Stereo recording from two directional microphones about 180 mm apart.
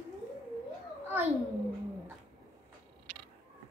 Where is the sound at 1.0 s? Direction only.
10° right (ahead or behind).